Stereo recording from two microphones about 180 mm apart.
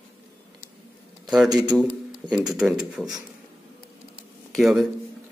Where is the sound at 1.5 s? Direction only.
25° right (ahead or behind).